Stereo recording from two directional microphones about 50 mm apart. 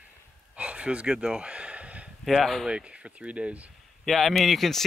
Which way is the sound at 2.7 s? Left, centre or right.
Right.